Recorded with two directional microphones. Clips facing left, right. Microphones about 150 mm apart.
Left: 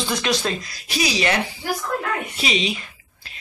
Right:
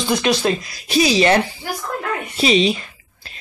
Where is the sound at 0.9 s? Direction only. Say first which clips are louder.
Right 7 dB; 25° right (ahead or behind).